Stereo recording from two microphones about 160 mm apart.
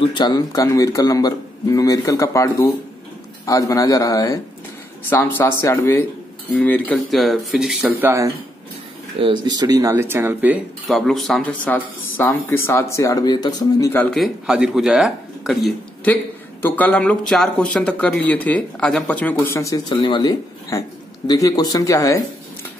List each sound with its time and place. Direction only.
0.0 s a man's voice: 30° left (ahead or behind); by 7.9 s centre (ahead or behind)
8.0 s speech: 20° right (ahead or behind)
9.2 s speech: 30° right (ahead or behind); by 10.6 s 10° right (ahead or behind)
10.9 s speech: centre (ahead or behind); by 14.0 s 20° left (ahead or behind)
14.1 s a man's voice: centre (ahead or behind); by 22.2 s 20° left (ahead or behind)